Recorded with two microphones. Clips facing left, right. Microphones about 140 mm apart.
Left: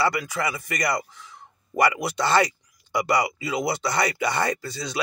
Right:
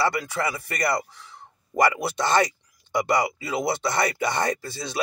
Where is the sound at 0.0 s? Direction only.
25° right (ahead or behind).